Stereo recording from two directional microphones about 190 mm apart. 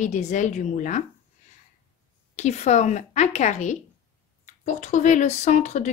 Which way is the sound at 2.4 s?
35° left (ahead or behind).